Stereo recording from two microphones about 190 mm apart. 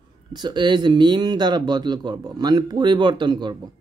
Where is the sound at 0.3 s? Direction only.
25° right (ahead or behind).